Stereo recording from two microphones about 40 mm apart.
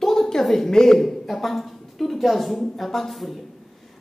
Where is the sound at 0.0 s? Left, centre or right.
Centre.